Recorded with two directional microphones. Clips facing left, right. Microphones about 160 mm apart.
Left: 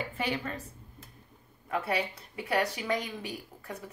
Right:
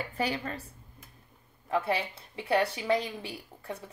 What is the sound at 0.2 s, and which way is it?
Speech, 35° right (ahead or behind).